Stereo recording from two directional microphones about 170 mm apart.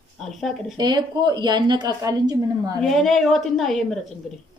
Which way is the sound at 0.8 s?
25° right (ahead or behind).